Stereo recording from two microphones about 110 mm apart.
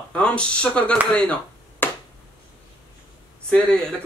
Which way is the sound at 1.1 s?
10° left (ahead or behind).